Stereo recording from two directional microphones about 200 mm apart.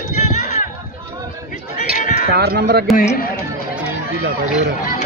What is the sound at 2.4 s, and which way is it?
Speech, 55° right (ahead or behind).